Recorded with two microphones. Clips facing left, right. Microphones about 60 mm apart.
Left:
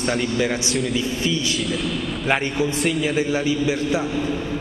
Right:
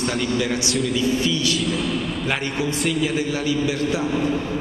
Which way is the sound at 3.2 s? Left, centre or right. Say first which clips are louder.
Left 2 dB; left.